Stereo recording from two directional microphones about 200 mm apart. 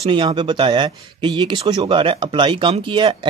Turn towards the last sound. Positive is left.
turn(degrees=-25)  # may be behind; listen again after turning